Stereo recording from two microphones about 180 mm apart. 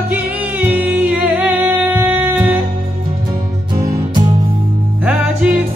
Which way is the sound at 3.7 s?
20° right (ahead or behind).